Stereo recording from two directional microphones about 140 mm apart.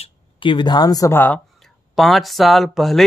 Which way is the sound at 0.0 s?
35° left (ahead or behind).